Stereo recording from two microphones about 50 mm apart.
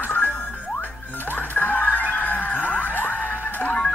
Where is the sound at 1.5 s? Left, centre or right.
Left.